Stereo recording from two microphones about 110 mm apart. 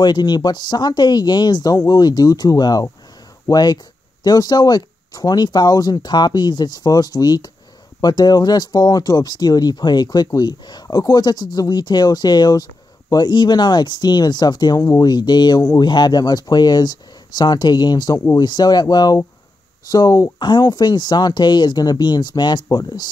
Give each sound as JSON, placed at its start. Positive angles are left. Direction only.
{"t": 0.0, "sound": "speech", "side_deg": 40}